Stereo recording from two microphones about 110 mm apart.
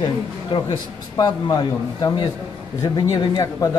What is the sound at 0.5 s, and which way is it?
Speech, 60° left (ahead or behind).